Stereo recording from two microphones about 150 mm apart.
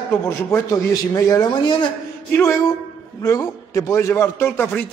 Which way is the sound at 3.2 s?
20° left (ahead or behind).